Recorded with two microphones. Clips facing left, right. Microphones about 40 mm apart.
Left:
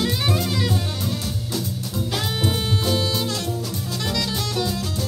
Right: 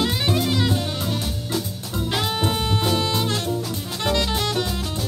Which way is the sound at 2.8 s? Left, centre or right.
Right.